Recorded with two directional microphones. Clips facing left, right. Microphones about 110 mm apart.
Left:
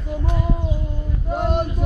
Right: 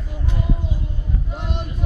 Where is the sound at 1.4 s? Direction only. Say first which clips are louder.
Left 13 dB; 50° left (ahead or behind).